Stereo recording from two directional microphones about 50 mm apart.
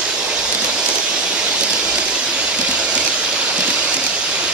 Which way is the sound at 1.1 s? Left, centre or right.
Centre.